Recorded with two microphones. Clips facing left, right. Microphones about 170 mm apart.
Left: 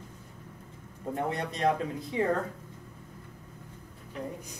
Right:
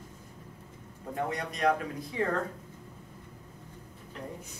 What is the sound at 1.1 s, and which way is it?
Speech, 25° left (ahead or behind).